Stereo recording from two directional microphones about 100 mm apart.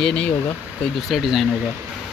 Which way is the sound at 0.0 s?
10° left (ahead or behind).